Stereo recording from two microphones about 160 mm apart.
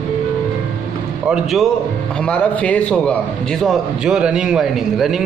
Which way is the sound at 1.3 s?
Centre (ahead or behind).